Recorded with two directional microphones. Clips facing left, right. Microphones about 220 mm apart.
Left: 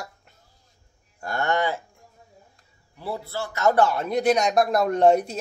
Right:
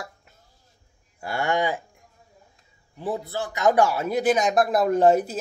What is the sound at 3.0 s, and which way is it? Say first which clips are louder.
A man's voice: right 2 dB; 20° right (ahead or behind).